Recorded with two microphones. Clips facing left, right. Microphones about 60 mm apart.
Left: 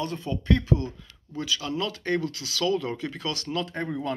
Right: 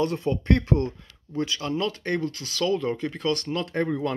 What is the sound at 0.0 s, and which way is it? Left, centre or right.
Speech, right.